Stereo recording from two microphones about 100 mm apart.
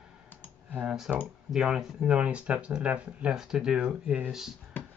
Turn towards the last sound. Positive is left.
turn(degrees=-5)  # may be behind; listen again after turning